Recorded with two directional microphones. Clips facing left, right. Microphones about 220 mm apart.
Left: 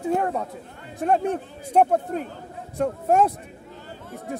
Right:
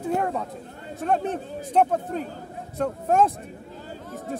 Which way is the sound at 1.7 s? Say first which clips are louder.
Left 2 dB; 10° left (ahead or behind).